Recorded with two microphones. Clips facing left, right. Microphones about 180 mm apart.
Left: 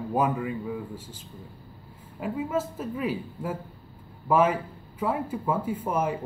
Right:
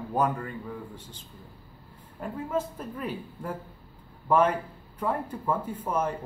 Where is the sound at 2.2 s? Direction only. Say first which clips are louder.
Left 2 dB; 5° left (ahead or behind).